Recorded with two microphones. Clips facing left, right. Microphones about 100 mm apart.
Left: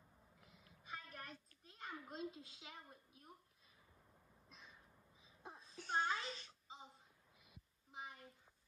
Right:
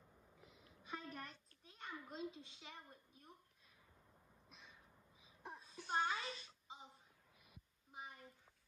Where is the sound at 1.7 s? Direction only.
Centre (ahead or behind).